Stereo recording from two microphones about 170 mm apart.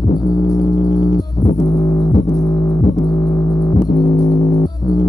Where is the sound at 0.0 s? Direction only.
25° left (ahead or behind).